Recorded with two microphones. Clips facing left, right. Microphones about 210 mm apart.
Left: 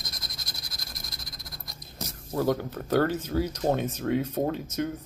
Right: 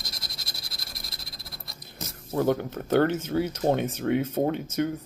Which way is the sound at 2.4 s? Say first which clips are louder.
Right 1 dB; 25° right (ahead or behind).